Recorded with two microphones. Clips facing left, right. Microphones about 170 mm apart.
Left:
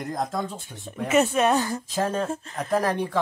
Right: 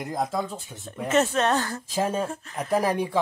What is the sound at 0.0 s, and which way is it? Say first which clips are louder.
Speech: right 1 dB; 5° right (ahead or behind).